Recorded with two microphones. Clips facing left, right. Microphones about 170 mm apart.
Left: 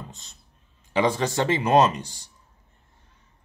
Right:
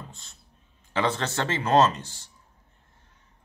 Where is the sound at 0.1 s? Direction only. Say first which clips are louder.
Left 3 dB; 20° left (ahead or behind).